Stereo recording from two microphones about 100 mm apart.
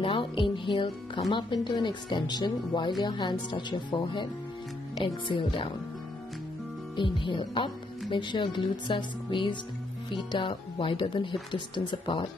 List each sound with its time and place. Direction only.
0.0 s speech: 55° left (ahead or behind)
7.0 s speech: 55° left (ahead or behind)